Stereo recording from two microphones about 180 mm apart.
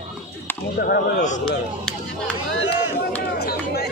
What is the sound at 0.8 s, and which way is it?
Speech, 65° left (ahead or behind).